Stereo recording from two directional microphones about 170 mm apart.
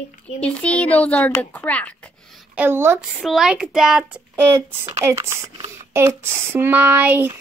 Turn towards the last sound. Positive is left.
turn(degrees=-10)  # may be behind; listen again after turning